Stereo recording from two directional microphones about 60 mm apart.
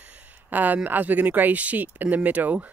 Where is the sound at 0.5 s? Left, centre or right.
Right.